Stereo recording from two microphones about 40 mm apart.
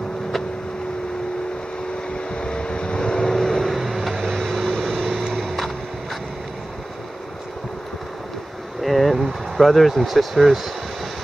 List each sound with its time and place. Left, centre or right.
2.1 s vehicle: left
3.7 s vehicle: centre
5.3 s a sound: centre
8.8 s vehicle: centre